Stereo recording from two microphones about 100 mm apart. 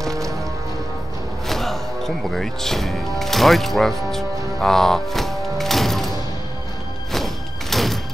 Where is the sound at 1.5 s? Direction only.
Centre (ahead or behind).